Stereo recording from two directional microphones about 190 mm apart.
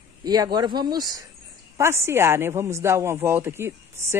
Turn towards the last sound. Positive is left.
turn(degrees=-15)  # may be behind; listen again after turning